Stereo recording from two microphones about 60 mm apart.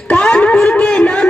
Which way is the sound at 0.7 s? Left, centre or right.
Centre.